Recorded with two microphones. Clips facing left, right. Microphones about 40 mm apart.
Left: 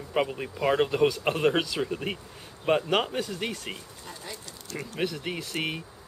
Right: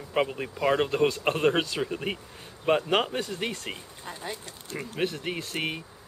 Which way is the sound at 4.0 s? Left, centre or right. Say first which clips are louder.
Right 4 dB; right.